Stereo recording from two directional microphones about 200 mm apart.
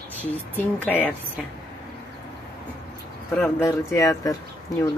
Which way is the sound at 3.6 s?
15° left (ahead or behind).